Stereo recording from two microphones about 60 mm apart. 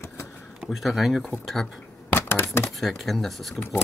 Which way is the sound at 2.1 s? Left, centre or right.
Left.